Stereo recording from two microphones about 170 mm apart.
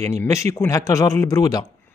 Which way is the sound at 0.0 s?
15° left (ahead or behind).